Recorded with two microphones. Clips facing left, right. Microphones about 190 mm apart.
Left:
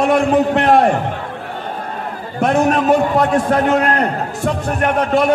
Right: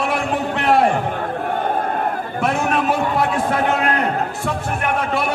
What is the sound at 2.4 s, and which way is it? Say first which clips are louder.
A man's voice: left 6 dB; 40° left (ahead or behind).